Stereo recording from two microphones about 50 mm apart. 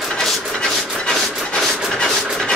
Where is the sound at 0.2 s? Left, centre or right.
Centre.